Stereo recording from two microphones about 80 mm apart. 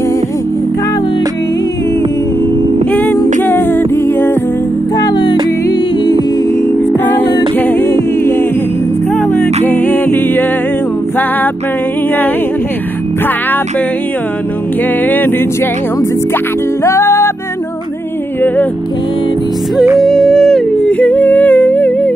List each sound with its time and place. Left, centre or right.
2.9 s music: left
3.4 s a capella: left
4.9 s music: left
7.1 s music: left
7.5 s a capella: left
9.3 s music: left
15.0 s music: left
16.8 s music: left
20.0 s yodeling: centre
20.9 s humming: left